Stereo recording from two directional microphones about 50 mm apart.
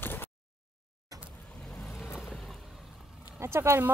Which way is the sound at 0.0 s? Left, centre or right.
Left.